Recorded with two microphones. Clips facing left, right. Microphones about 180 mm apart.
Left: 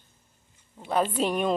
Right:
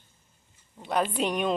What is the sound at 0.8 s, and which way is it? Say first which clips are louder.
Speech: left 2 dB; 5° left (ahead or behind).